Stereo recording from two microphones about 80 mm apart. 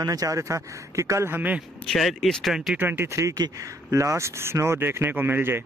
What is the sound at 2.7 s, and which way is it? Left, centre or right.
Speech, right.